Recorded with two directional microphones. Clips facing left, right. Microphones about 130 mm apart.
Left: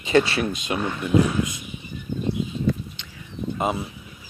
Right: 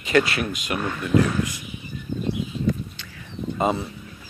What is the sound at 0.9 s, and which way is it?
Speech, 15° left (ahead or behind).